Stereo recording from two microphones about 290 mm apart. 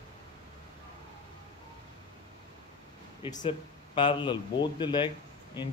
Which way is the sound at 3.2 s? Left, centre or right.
Centre.